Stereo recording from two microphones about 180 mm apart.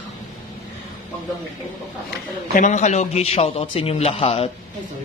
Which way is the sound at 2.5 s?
40° left (ahead or behind).